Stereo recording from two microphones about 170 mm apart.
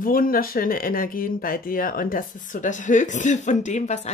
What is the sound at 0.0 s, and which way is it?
Speech, 55° left (ahead or behind).